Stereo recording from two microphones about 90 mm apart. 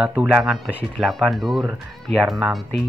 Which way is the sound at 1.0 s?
Centre (ahead or behind).